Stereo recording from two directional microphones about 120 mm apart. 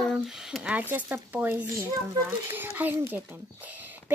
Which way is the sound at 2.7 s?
15° right (ahead or behind).